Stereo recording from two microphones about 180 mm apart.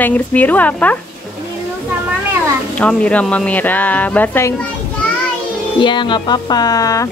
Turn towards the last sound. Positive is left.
turn(degrees=20)  # may be behind; listen again after turning